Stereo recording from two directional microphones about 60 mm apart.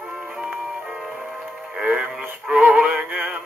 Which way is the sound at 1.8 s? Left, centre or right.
Centre.